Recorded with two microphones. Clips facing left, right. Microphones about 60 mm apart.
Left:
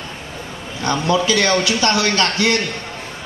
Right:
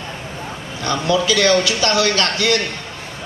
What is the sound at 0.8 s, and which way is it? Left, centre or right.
A man's voice, left.